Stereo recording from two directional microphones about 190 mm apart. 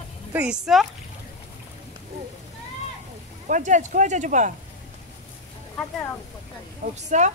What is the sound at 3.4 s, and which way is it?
Speech, 40° right (ahead or behind).